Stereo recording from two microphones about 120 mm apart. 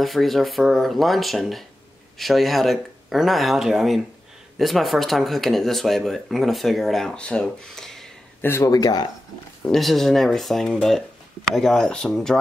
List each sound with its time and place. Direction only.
0.0 s speech: centre (ahead or behind)
8.4 s speech: 20° left (ahead or behind)
9.7 s speech: centre (ahead or behind)